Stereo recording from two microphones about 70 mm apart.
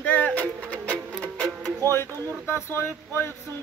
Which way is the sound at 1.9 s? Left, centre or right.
Left.